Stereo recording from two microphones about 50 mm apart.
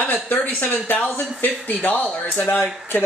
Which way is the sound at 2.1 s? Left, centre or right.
Centre.